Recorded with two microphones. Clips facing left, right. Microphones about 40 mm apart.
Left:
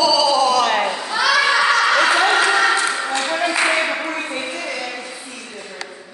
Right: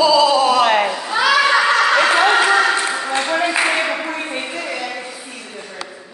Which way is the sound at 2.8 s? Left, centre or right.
Centre.